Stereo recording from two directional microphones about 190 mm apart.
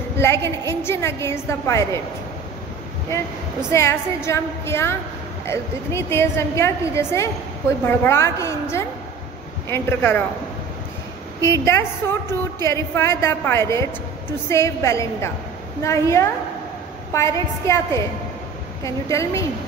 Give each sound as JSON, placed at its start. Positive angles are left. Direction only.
{"t": 0.2, "sound": "a woman's voice", "side_deg": 15}
{"t": 3.7, "sound": "a woman's voice", "side_deg": 15}
{"t": 11.4, "sound": "a woman's voice", "side_deg": 15}